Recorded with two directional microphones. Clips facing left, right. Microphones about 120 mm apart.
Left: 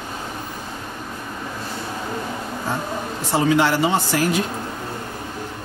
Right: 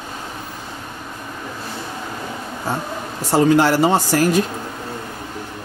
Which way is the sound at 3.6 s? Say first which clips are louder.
Right 3 dB; 40° right (ahead or behind).